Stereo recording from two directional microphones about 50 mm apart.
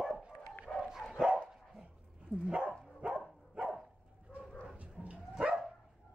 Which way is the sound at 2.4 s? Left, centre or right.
Centre.